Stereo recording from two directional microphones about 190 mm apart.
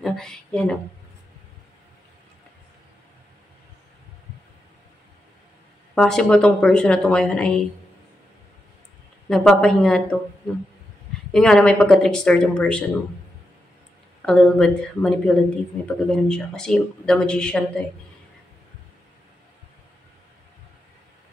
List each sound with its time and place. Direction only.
0.0 s a sound: centre (ahead or behind)
5.9 s speech: 5° left (ahead or behind)
9.3 s speech: centre (ahead or behind)
11.3 s speech: 5° left (ahead or behind)
14.2 s speech: 5° left (ahead or behind)